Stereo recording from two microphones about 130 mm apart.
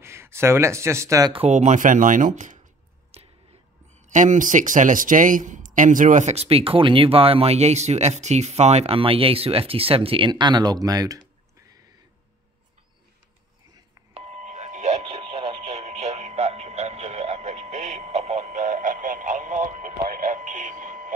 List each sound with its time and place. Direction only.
0.0 s speech: 20° right (ahead or behind)
1.5 s speech: 70° right (ahead or behind)
3.1 s finger snapping: 50° right (ahead or behind)
4.1 s speech: 75° right (ahead or behind); by 11.2 s 30° right (ahead or behind)
14.1 s doorbell: 55° right (ahead or behind); by 21.1 s 90° right